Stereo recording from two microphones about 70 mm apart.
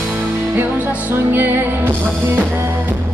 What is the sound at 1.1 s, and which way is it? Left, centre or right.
Music, right.